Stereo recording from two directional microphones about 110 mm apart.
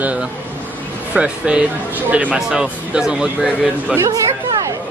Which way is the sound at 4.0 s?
35° right (ahead or behind).